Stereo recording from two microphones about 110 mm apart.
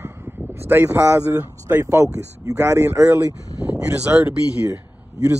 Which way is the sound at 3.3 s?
30° left (ahead or behind).